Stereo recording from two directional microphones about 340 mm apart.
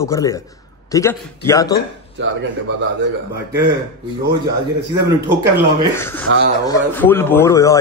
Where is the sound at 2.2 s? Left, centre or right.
Right.